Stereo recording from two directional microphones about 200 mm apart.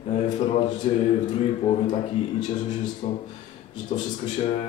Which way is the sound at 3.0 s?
30° left (ahead or behind).